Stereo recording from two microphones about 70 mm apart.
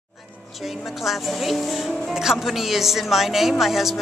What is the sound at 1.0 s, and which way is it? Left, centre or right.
Speech, centre.